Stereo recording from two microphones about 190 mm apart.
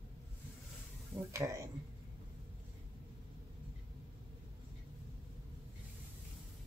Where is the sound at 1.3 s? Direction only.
15° right (ahead or behind).